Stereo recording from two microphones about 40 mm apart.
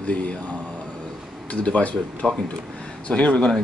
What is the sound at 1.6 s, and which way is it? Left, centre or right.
Speech, left.